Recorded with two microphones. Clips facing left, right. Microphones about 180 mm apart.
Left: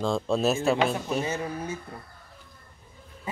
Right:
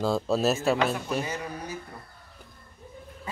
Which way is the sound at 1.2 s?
25° left (ahead or behind).